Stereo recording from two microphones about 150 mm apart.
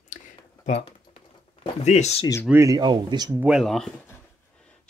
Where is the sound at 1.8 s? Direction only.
45° left (ahead or behind).